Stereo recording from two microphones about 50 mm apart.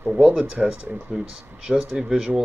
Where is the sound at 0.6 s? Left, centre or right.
Centre.